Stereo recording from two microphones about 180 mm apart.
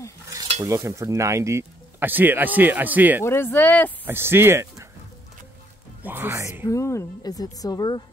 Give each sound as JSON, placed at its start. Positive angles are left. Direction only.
{"t": 0.6, "sound": "speech", "side_deg": -15}
{"t": 3.3, "sound": "speech", "side_deg": 10}
{"t": 4.0, "sound": "speech", "side_deg": -10}
{"t": 6.0, "sound": "speech", "side_deg": -10}
{"t": 6.6, "sound": "a woman's voice", "side_deg": 15}